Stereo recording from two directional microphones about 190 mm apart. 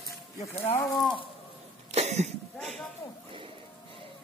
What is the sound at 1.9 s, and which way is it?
Cough, 35° right (ahead or behind).